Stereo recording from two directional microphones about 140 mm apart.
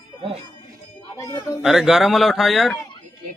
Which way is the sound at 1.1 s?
25° left (ahead or behind).